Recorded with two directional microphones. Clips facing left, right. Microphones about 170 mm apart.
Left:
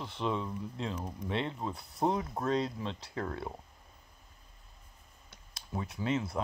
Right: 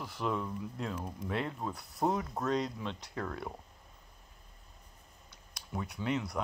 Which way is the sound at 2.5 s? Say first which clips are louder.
Left 2 dB; 30° left (ahead or behind).